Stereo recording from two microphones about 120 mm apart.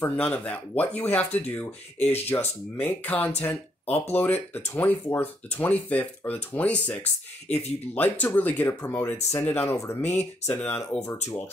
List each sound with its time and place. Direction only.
0.0 s speech: 10° left (ahead or behind)
7.4 s speech: 60° left (ahead or behind)
7.9 s speech: 15° left (ahead or behind)